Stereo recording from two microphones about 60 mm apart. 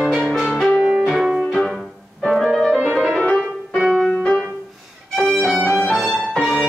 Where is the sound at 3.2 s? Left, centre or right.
Centre.